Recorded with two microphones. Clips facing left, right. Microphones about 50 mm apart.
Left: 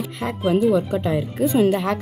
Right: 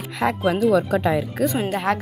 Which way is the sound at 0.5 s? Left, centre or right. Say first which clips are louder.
Left 1 dB; right.